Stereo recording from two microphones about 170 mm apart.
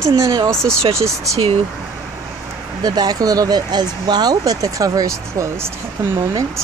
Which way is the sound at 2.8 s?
25° right (ahead or behind).